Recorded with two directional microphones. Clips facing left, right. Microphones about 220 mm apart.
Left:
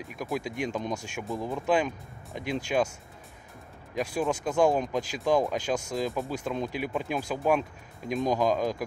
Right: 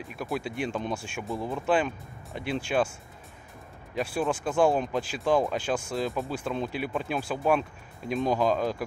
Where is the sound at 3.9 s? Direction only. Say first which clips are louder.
Even; 15° left (ahead or behind).